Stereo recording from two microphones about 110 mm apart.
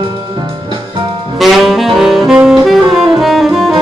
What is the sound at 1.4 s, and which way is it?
Saxophone, centre (ahead or behind).